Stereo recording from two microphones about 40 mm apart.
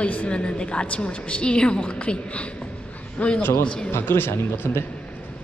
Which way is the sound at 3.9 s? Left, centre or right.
Left.